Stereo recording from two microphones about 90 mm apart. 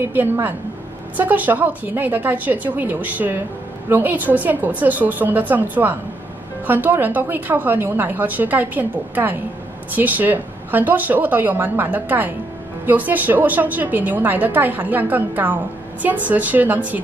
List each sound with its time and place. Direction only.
0.0 s a woman's voice: 20° right (ahead or behind)